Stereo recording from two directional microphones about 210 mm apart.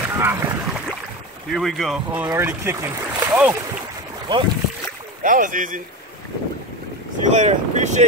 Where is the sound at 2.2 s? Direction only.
10° right (ahead or behind).